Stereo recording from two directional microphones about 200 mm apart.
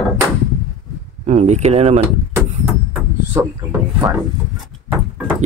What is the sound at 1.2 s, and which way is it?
Speech, 35° right (ahead or behind).